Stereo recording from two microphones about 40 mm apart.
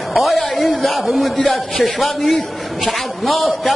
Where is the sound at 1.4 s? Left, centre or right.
Left.